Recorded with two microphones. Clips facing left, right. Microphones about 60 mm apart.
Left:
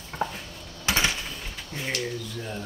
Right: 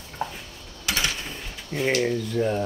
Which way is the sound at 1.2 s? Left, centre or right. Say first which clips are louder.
Right 1 dB; right.